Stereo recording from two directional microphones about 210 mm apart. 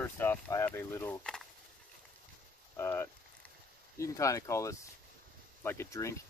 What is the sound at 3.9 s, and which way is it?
Speech, 15° left (ahead or behind).